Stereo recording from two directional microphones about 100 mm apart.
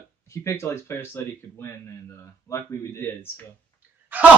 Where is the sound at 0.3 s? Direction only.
30° left (ahead or behind).